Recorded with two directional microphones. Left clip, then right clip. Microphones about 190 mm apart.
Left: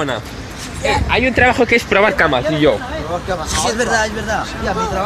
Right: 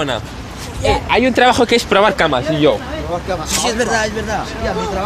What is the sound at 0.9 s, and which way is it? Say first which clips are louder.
Speech: right 1 dB; 25° right (ahead or behind).